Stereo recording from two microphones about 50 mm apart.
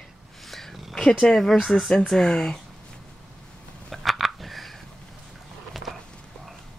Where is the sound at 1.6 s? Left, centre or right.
Centre.